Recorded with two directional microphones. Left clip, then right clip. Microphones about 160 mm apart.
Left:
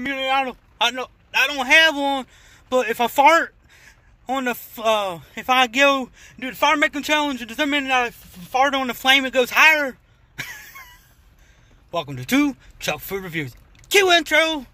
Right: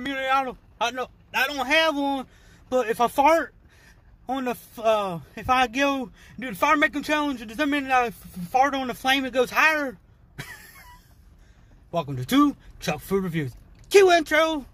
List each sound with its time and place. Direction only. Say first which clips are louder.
0.3 s a sound: left 1 dB; 10° right (ahead or behind)
0.9 s a man's voice: left 4 dB; 20° right (ahead or behind)
1.7 s speech: left 8 dB; 5° right (ahead or behind)
8.7 s speech: left 6 dB; 5° right (ahead or behind)
11.9 s speech: left 2 dB; 10° right (ahead or behind)